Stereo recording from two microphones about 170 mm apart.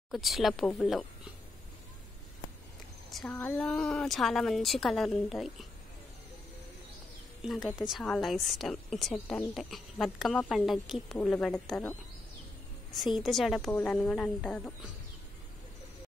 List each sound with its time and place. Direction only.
0.1 s speech: centre (ahead or behind)
3.1 s a sound: centre (ahead or behind)
3.3 s speech: 10° left (ahead or behind)
7.4 s speech: centre (ahead or behind)
13.2 s speech: centre (ahead or behind)